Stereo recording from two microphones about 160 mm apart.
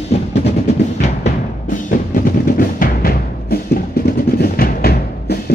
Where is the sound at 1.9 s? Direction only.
60° left (ahead or behind).